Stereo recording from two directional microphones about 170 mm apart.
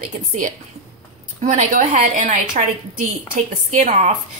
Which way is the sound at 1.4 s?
45° right (ahead or behind).